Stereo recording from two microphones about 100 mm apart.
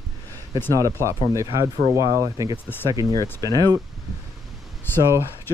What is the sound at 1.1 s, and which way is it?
Speech, 30° right (ahead or behind).